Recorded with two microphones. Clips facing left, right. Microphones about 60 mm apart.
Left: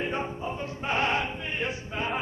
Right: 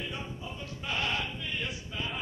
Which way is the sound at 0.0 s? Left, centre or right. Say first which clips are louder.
Left 8 dB; left.